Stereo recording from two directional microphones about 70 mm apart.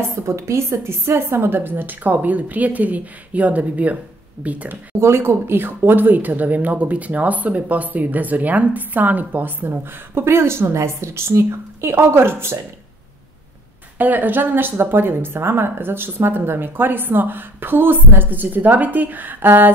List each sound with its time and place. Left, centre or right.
0.1 s speech: right; by 4.7 s centre
5.0 s speech: right
13.9 s speech: right